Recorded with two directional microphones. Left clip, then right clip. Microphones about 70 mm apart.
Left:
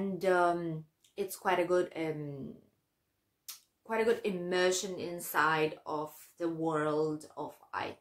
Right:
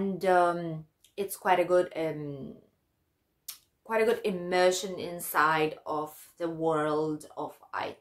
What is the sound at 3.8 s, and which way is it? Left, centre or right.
Speech, right.